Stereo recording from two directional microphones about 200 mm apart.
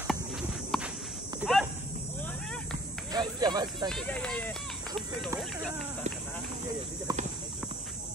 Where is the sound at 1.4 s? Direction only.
Centre (ahead or behind).